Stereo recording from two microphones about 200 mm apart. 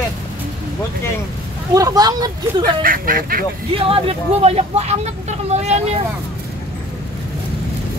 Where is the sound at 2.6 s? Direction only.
45° right (ahead or behind).